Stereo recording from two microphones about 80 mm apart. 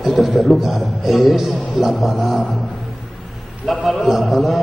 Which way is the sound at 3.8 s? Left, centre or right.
Centre.